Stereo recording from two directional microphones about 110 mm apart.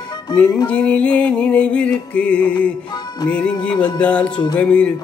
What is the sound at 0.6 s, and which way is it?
Music, 10° left (ahead or behind).